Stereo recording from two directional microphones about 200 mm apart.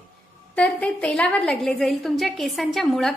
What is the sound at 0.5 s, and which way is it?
A woman's voice, 5° left (ahead or behind).